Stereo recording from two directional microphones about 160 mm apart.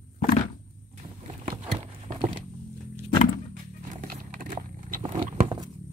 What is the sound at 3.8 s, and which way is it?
Music, 55° right (ahead or behind).